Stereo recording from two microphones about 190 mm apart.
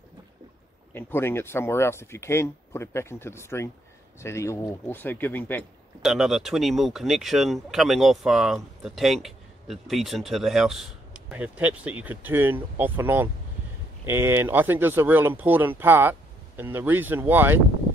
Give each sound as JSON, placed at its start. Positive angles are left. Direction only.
{"t": 0.9, "sound": "speech", "side_deg": 10}
{"t": 6.0, "sound": "speech", "side_deg": 0}